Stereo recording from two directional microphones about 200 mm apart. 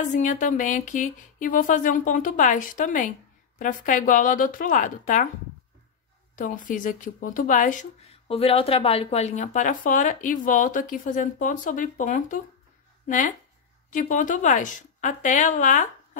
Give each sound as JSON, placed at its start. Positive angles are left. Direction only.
{"t": 0.1, "sound": "speech", "side_deg": 40}
{"t": 6.3, "sound": "speech", "side_deg": 40}
{"t": 13.8, "sound": "speech", "side_deg": 40}